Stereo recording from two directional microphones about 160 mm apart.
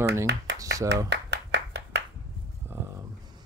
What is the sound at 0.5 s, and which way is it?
Clapping, 90° right.